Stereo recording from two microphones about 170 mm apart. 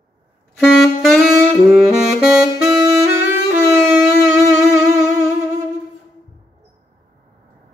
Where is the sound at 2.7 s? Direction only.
15° right (ahead or behind).